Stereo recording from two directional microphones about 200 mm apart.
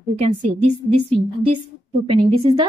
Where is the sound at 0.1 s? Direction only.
30° right (ahead or behind).